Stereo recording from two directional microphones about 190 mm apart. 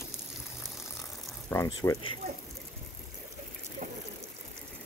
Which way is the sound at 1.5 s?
15° left (ahead or behind).